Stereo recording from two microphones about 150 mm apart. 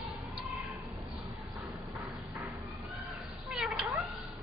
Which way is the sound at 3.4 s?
5° right (ahead or behind).